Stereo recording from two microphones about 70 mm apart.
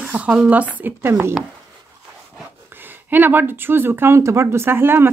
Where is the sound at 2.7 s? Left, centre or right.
Right.